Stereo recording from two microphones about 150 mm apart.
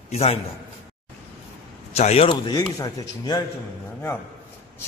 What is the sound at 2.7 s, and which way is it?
Speech, 25° left (ahead or behind).